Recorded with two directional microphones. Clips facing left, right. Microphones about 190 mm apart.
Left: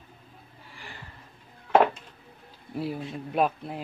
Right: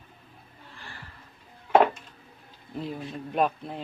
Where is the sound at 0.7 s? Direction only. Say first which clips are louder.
Left 1 dB; 15° left (ahead or behind).